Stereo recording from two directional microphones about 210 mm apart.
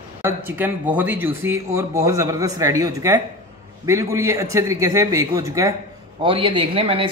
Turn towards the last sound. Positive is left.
turn(degrees=-25)  # may be behind; listen again after turning